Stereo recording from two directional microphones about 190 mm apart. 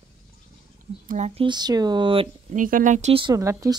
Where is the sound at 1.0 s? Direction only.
35° right (ahead or behind).